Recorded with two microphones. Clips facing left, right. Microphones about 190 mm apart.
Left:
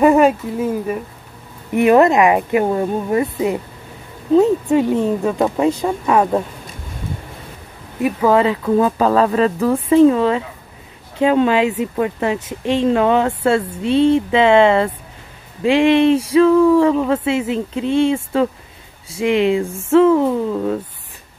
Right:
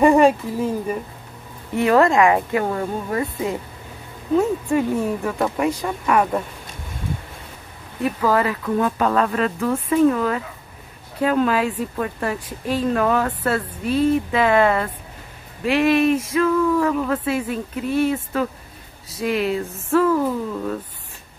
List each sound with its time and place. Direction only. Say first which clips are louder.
0.0 s speech: left 2 dB; 5° left (ahead or behind)
1.7 s speech: left 4 dB; 20° left (ahead or behind)
8.0 s speech: left 5 dB; 25° left (ahead or behind)
19.6 s a sound: left 6 dB; 10° left (ahead or behind)
19.9 s speech: left 6 dB; 25° left (ahead or behind)